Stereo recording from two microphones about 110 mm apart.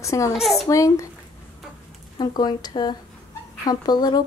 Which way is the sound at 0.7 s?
30° left (ahead or behind).